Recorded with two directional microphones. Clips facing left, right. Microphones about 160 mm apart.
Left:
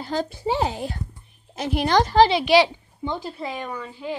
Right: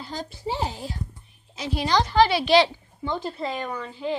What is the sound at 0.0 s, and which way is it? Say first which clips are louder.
A woman's voice: left 7 dB; 65° left (ahead or behind).